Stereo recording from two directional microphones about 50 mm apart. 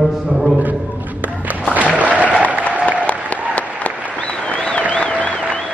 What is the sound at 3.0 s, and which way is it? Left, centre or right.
Applause, left.